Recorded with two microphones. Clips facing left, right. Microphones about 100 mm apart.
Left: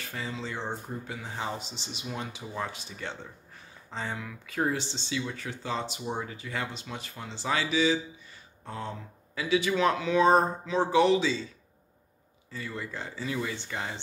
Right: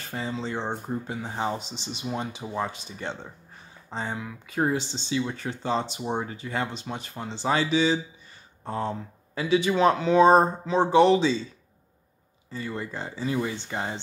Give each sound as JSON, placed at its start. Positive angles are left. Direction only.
{"t": 0.1, "sound": "speech", "side_deg": -30}
{"t": 5.1, "sound": "speech", "side_deg": -30}
{"t": 12.5, "sound": "speech", "side_deg": -30}